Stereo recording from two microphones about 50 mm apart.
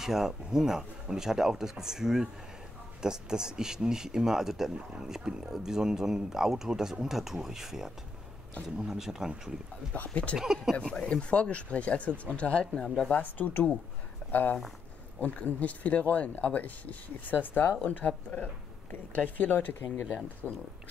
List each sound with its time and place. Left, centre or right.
0.0 s speech: centre
9.9 s speech: left
10.3 s speech: centre
10.9 s speech: centre
12.8 s speech: centre
13.1 s speech: left
20.4 s speech: left